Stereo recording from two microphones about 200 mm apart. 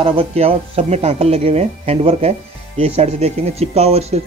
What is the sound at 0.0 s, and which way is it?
Speech, 30° right (ahead or behind).